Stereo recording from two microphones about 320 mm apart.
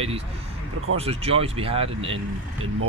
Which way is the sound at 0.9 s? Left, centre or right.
Centre.